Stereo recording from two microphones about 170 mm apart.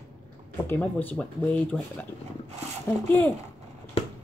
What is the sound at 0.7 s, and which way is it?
Speech, 10° left (ahead or behind).